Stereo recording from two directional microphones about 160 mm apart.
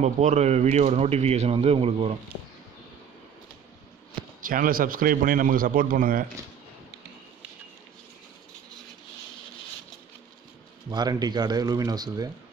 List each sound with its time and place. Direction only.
0.0 s speech: 45° right (ahead or behind)
4.4 s a man's voice: 60° right (ahead or behind)
10.9 s speech: 25° right (ahead or behind)